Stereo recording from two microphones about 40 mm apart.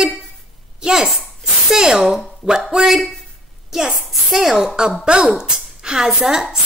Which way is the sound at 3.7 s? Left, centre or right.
Centre.